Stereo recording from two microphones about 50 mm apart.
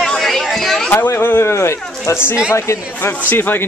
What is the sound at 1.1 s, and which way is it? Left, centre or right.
Speech, left.